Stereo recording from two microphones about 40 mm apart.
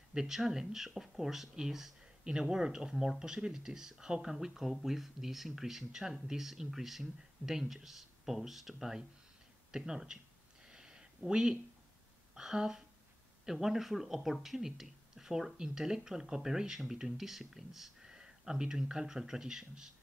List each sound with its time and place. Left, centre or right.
0.1 s speech: centre
10.6 s a sound: centre
11.2 s speech: centre